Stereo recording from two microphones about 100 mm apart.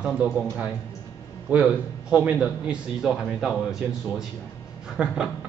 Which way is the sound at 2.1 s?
10° right (ahead or behind).